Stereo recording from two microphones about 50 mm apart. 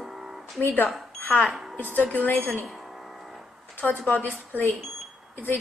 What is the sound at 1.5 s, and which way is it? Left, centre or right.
Speech, centre.